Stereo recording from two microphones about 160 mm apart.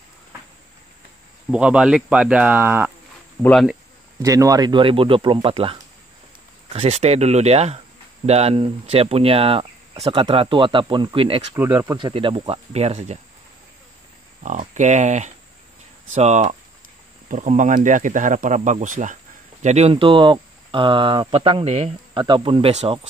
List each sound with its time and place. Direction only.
1.5 s speech: 5° right (ahead or behind)
3.4 s speech: 5° left (ahead or behind)
4.2 s speech: 20° right (ahead or behind)
11.5 s speech: 15° right (ahead or behind)
12.0 s speech: 30° right (ahead or behind)
14.4 s speech: 50° right (ahead or behind)
22.2 s speech: 30° right (ahead or behind)